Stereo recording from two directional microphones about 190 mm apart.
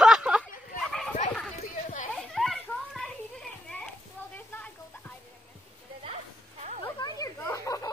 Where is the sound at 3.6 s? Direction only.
5° left (ahead or behind).